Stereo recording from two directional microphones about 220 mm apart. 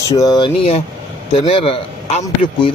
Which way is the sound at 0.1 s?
15° left (ahead or behind).